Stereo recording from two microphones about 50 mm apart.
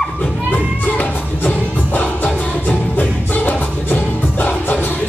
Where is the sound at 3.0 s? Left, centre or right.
Left.